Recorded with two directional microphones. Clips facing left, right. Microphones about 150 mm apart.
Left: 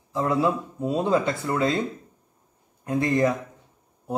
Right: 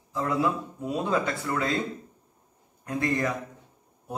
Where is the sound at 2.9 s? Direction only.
25° left (ahead or behind).